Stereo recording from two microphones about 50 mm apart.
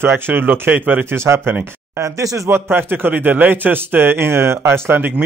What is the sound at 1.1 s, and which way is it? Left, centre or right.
Speech, right.